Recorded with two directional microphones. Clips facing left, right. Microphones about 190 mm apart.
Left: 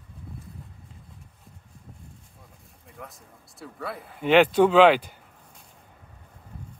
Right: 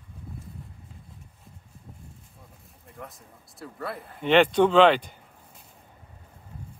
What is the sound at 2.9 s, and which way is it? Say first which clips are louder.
Speech: right 1 dB; centre (ahead or behind).